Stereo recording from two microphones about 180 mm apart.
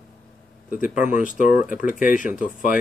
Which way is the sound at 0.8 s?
45° left (ahead or behind).